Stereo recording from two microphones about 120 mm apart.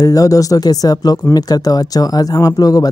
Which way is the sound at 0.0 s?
30° left (ahead or behind).